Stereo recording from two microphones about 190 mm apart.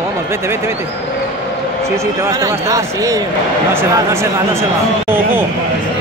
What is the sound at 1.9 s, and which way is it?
Speech, 15° right (ahead or behind).